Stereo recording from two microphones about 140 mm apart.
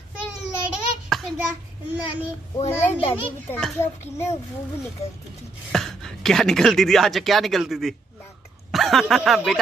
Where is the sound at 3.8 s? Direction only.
20° left (ahead or behind).